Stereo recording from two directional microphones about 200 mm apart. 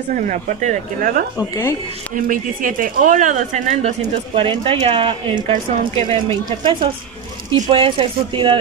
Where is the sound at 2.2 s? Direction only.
45° right (ahead or behind).